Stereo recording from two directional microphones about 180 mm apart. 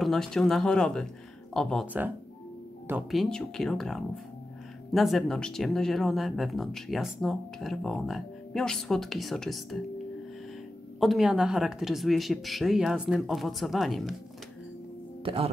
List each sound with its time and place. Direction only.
0.0 s speech: centre (ahead or behind)
3.1 s speech: centre (ahead or behind)
11.0 s speech: centre (ahead or behind)
15.2 s speech: 30° right (ahead or behind)